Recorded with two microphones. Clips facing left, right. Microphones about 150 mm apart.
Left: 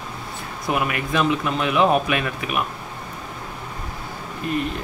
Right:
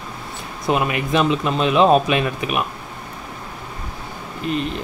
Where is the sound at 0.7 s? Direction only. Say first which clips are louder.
Right 4 dB; 25° right (ahead or behind).